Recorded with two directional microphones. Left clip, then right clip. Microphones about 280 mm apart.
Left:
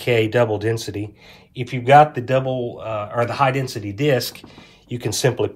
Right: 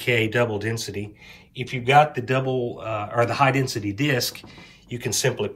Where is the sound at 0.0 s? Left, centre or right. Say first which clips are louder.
Left 4 dB; centre.